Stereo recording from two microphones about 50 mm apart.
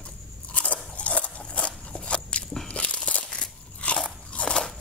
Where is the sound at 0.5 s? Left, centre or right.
Left.